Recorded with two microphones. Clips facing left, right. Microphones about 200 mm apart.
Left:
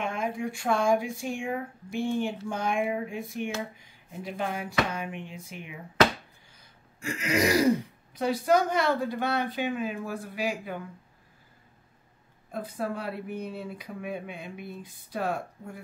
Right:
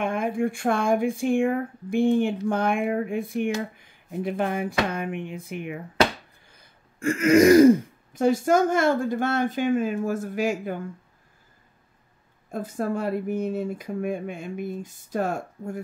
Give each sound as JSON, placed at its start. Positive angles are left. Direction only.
{"t": 0.0, "sound": "speech", "side_deg": -55}
{"t": 12.4, "sound": "speech", "side_deg": -45}